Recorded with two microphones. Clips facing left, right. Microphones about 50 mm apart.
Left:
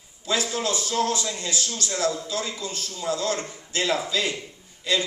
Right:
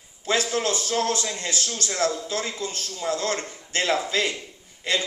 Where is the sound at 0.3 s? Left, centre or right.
Right.